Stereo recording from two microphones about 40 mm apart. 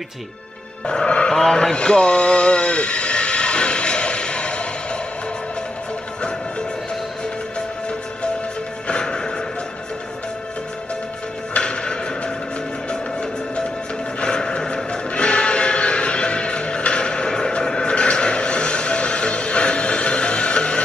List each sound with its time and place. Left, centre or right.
0.8 s music: left
1.3 s a sound: centre
8.8 s music: left
11.5 s music: left